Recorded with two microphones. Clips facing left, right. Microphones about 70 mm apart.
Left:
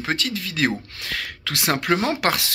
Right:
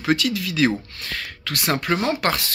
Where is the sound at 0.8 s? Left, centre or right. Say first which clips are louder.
Left 1 dB; left.